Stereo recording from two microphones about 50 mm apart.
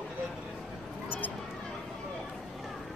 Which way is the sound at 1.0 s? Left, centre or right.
Left.